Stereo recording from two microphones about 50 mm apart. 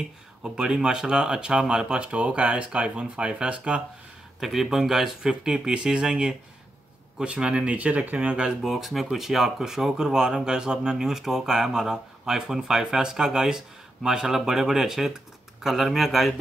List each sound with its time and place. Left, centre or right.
0.4 s speech: centre
2.0 s speech: right
4.4 s speech: centre
5.2 s speech: centre; by 8.4 s right
8.6 s speech: centre